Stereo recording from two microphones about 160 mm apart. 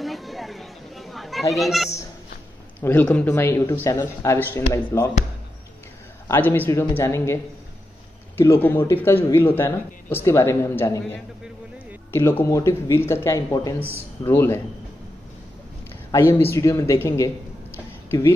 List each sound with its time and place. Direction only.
0.0 s a sound: centre (ahead or behind)
1.5 s speech: centre (ahead or behind)
2.8 s speech: 10° left (ahead or behind)
6.2 s speech: 15° left (ahead or behind)
8.4 s speech: 15° left (ahead or behind)
16.1 s speech: 15° left (ahead or behind)